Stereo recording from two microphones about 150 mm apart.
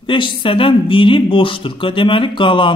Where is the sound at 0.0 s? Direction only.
35° left (ahead or behind).